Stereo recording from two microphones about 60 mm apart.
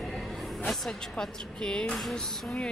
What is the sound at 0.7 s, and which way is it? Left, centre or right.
Speech, centre.